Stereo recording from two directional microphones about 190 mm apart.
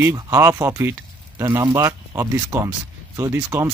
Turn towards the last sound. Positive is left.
turn(degrees=-15)  # may be behind; listen again after turning